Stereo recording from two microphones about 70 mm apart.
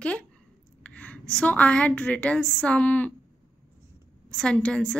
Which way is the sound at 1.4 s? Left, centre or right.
Centre.